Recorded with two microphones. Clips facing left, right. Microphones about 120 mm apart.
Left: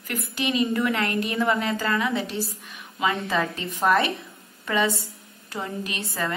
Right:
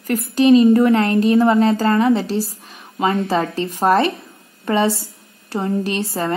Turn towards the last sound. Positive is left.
turn(degrees=-30)  # may be behind; listen again after turning